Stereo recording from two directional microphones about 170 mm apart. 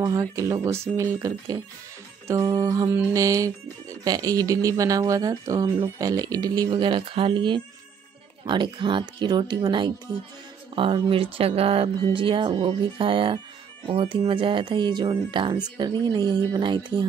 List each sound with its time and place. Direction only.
0.0 s speech: 20° right (ahead or behind)